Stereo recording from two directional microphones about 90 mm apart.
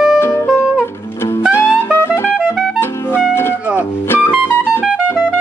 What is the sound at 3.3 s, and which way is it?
Music, 25° left (ahead or behind).